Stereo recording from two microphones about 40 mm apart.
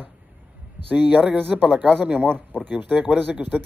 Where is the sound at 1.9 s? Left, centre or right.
Right.